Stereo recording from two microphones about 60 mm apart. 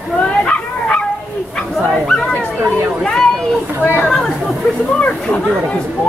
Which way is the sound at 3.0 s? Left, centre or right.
Centre.